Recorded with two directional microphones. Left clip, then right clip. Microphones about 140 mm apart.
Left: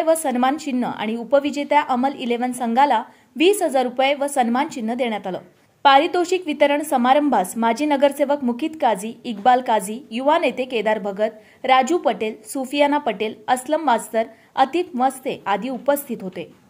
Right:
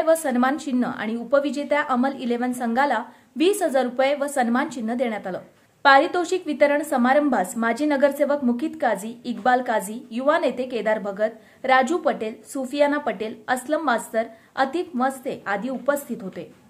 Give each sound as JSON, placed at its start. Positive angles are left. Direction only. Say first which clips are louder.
{"t": 0.0, "sound": "a woman's voice", "louder": "left 2 dB", "side_deg": 15}